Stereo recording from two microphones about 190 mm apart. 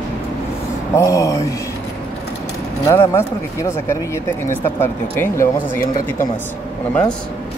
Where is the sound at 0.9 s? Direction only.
15° left (ahead or behind).